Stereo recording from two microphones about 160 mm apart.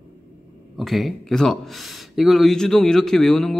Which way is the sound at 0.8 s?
Centre (ahead or behind).